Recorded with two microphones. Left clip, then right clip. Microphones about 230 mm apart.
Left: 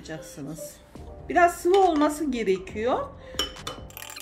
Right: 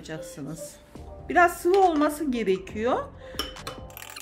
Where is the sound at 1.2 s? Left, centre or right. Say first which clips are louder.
Even; centre.